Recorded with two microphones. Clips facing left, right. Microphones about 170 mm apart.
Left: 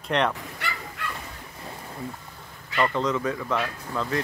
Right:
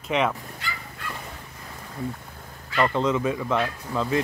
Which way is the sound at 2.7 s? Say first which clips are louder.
Right 2 dB; 10° right (ahead or behind).